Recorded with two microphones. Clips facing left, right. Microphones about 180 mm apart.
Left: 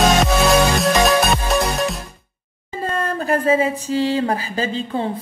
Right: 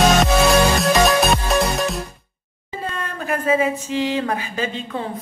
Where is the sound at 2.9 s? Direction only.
35° left (ahead or behind).